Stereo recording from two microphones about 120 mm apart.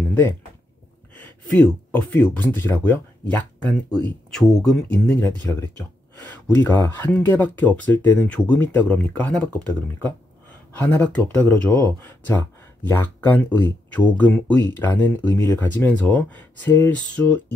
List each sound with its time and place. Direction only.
1.5 s speech: 10° left (ahead or behind)
5.4 s speech: 20° left (ahead or behind)